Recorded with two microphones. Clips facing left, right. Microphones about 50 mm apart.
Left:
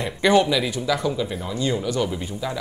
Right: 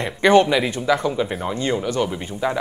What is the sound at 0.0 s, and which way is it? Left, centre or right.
Speech, right.